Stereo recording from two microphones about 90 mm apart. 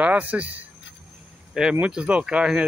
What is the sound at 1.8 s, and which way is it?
Speech, 15° right (ahead or behind).